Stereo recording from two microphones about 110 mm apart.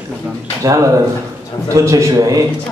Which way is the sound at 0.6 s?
30° right (ahead or behind).